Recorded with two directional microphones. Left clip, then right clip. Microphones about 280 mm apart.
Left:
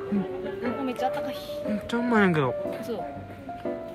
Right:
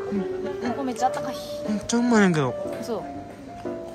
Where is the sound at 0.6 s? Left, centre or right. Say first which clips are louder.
Right 3 dB; centre.